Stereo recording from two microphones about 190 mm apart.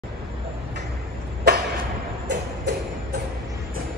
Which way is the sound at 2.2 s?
60° right (ahead or behind).